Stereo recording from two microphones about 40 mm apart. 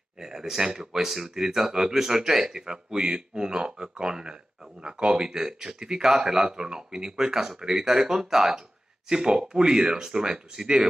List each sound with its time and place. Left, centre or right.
0.2 s speech: centre